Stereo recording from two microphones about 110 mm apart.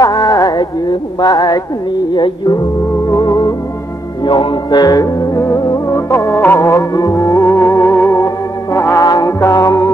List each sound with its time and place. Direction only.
0.0 s a sound: 35° left (ahead or behind)
1.2 s music: 35° left (ahead or behind)
3.1 s music: 35° left (ahead or behind)
4.2 s music: 45° left (ahead or behind); by 9.8 s 30° left (ahead or behind)